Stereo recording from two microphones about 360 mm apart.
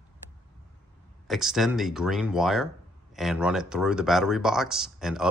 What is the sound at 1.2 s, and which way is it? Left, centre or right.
Speech, centre.